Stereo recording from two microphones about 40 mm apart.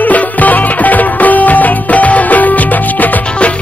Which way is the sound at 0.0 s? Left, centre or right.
Left.